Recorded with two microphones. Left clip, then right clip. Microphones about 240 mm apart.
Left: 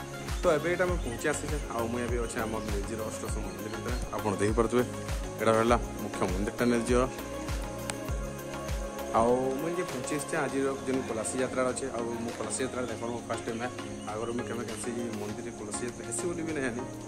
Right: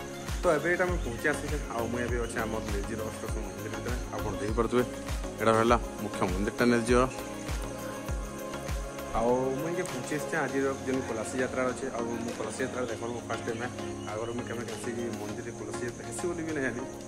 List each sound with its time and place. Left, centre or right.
0.4 s speech: centre
4.6 s speech: centre
9.1 s music: left
10.3 s speech: centre